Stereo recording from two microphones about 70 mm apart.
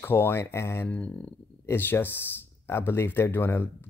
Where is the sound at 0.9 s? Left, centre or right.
Left.